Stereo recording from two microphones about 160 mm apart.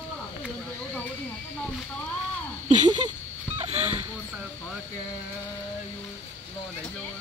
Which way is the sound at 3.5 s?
45° right (ahead or behind).